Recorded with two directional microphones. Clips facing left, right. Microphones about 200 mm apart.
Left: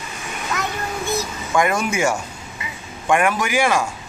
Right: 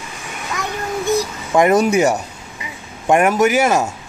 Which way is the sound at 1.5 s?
35° right (ahead or behind).